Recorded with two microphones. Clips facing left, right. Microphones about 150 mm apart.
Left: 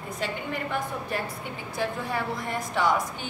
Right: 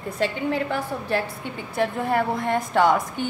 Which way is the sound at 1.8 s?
60° right (ahead or behind).